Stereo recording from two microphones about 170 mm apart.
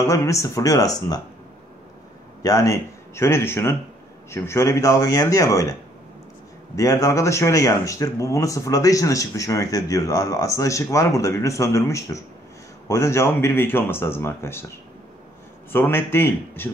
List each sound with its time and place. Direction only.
0.1 s speech: 20° left (ahead or behind)
2.4 s speech: 20° left (ahead or behind)
15.7 s speech: 15° left (ahead or behind)